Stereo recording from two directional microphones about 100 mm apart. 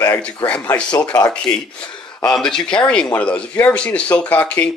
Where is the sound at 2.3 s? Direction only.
5° left (ahead or behind).